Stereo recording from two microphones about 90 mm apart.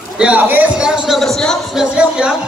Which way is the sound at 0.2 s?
15° right (ahead or behind).